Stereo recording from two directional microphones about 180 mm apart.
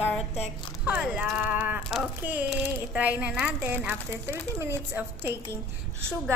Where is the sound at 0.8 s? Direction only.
5° right (ahead or behind).